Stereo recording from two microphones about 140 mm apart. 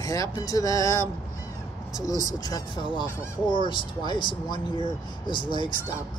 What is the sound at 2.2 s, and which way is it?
Speech, 25° left (ahead or behind).